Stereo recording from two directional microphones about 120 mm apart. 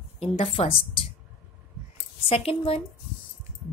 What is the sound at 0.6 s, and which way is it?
Speech, 65° left (ahead or behind).